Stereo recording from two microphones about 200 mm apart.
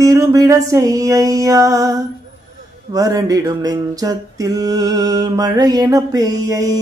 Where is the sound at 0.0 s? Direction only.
15° right (ahead or behind).